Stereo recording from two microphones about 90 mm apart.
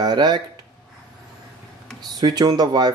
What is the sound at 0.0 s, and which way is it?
Speech, 50° right (ahead or behind).